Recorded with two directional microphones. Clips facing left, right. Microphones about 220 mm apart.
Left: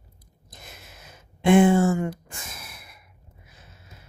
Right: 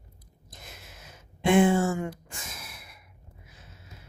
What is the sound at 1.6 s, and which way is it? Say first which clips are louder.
Speech: left 4 dB; 55° left (ahead or behind).